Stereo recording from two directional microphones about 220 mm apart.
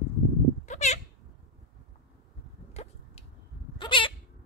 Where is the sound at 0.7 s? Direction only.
30° left (ahead or behind).